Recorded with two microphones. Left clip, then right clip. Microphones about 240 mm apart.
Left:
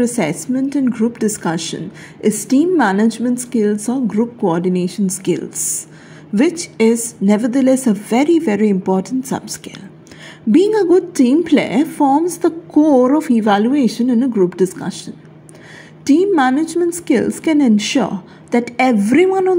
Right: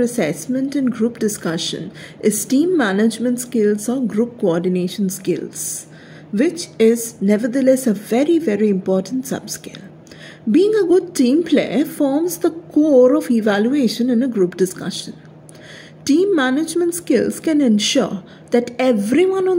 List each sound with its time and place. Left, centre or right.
0.0 s a woman's voice: centre
7.2 s a woman's voice: centre